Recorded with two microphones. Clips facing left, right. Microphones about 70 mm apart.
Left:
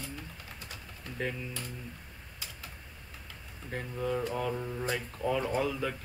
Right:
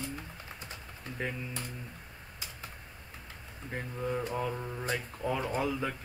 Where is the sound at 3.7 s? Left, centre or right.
Centre.